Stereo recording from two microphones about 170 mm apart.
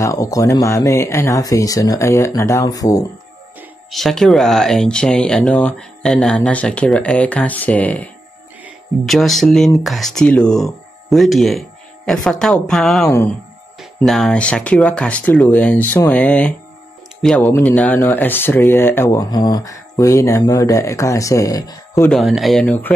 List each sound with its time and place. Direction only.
0.0 s speech: 20° left (ahead or behind)
3.9 s speech: centre (ahead or behind)
13.1 s speech: 15° left (ahead or behind)
13.9 s speech: centre (ahead or behind); by 22.1 s 20° left (ahead or behind)
22.1 s speech: centre (ahead or behind)